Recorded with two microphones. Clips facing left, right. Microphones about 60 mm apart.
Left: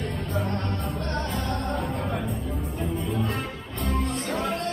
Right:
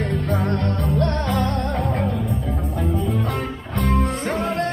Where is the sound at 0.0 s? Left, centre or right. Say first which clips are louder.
Right 6 dB; right.